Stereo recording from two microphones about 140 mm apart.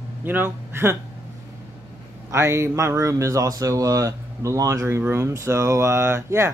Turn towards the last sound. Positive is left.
turn(degrees=-20)  # may be behind; listen again after turning